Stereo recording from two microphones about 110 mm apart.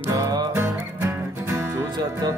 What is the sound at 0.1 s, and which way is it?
Music, 35° right (ahead or behind).